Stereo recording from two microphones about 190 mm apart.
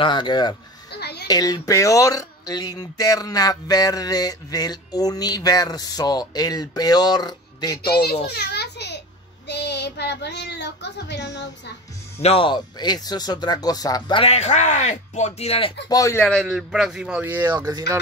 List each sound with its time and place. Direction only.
0.0 s speech: 25° left (ahead or behind)
0.9 s a sound: 60° left (ahead or behind)
1.2 s speech: 20° left (ahead or behind)
7.9 s child singing: 55° left (ahead or behind)
8.3 s children playing: 60° left (ahead or behind)
9.5 s child singing: 65° left (ahead or behind)
12.2 s speech: 30° left (ahead or behind)
15.9 s speech: 15° left (ahead or behind)
16.4 s a man's voice: centre (ahead or behind); by 17.9 s 20° right (ahead or behind)